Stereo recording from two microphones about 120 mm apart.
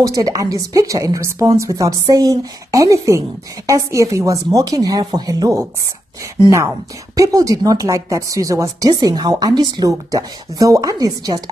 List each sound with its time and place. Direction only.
0.0 s speech: 30° right (ahead or behind)
7.2 s speech: 30° right (ahead or behind)